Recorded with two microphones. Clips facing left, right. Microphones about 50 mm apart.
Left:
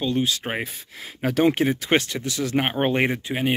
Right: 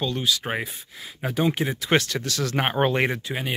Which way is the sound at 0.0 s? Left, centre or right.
Left.